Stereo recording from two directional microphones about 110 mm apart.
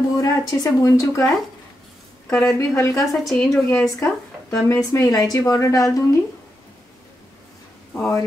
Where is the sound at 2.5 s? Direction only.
25° left (ahead or behind).